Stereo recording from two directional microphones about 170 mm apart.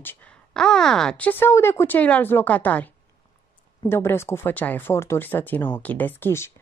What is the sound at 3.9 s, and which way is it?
A woman's voice, 15° left (ahead or behind).